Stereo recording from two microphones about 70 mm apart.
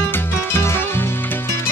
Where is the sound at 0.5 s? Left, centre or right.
Left.